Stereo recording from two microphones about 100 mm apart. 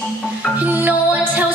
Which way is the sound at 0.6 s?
15° right (ahead or behind).